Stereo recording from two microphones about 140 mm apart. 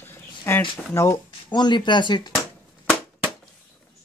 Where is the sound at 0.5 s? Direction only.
10° left (ahead or behind); by 2.3 s 30° left (ahead or behind).